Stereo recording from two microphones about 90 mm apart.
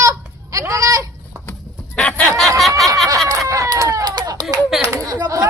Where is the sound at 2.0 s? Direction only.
15° left (ahead or behind).